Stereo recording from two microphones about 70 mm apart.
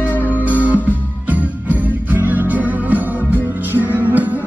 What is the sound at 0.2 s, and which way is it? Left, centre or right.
Music, right.